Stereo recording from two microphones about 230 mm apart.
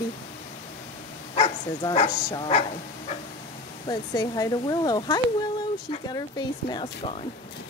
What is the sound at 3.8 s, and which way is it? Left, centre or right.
Speech, centre.